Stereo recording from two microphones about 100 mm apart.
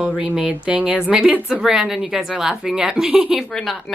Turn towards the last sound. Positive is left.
turn(degrees=0)  # may be behind; listen again after turning